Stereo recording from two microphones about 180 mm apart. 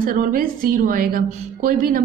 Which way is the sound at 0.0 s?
50° right (ahead or behind).